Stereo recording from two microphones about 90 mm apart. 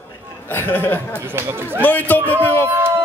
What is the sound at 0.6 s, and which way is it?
A man's voice, 25° left (ahead or behind).